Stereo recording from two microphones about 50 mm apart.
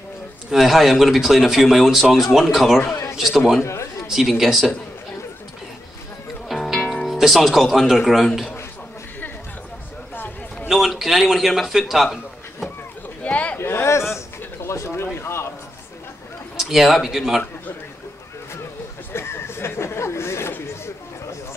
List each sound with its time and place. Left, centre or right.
0.5 s speech: centre
3.6 s a sound: left
4.1 s speech: centre
6.5 s music: centre
7.1 s speech: centre
10.1 s a sound: left
10.7 s a man's voice: centre
13.2 s a sound: left
13.6 s a sound: left
14.1 s bird: left
14.9 s speech: left
16.5 s speech: centre
19.1 s chatter: left